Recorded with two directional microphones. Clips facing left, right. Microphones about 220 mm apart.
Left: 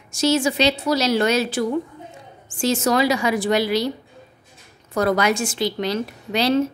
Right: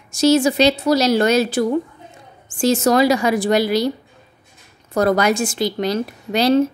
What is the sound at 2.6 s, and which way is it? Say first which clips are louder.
A woman's voice: right 4 dB; 40° right (ahead or behind).